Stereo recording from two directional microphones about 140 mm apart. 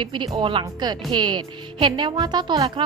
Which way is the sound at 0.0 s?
35° right (ahead or behind).